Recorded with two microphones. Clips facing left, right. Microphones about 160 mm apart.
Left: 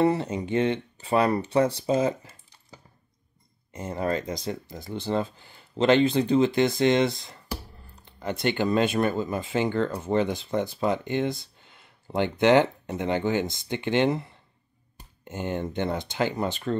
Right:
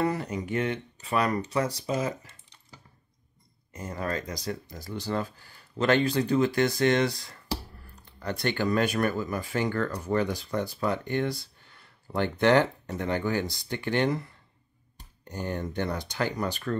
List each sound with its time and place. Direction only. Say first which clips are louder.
0.0 s speech: left 5 dB; 25° left (ahead or behind)